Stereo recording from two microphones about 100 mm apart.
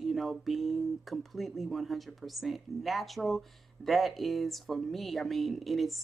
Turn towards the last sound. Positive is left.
turn(degrees=0)  # may be behind; listen again after turning